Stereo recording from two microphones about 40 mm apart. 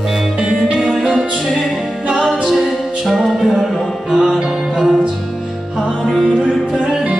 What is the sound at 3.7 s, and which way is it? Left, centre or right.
Music, centre.